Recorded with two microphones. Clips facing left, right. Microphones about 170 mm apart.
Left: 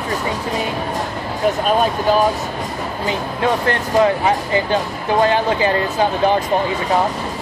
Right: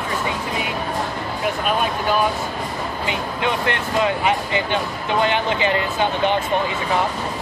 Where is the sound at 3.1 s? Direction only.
40° left (ahead or behind).